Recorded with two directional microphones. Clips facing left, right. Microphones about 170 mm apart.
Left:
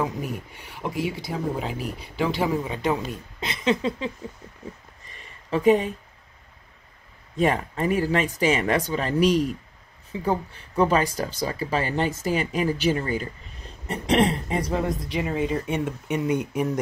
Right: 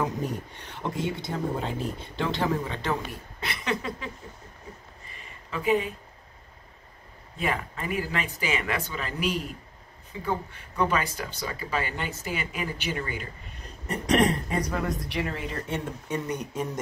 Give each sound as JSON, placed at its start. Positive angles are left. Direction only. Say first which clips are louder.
{"t": 0.0, "sound": "speech", "louder": "left 1 dB", "side_deg": 5}
{"t": 3.1, "sound": "speech", "louder": "left 3 dB", "side_deg": 20}
{"t": 5.0, "sound": "a sound", "louder": "right 1 dB", "side_deg": 35}
{"t": 7.3, "sound": "speech", "louder": "left 7 dB", "side_deg": 40}